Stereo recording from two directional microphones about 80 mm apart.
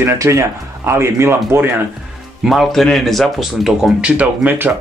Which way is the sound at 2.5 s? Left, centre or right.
Centre.